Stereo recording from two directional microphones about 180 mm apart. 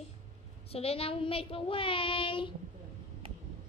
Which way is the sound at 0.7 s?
35° left (ahead or behind).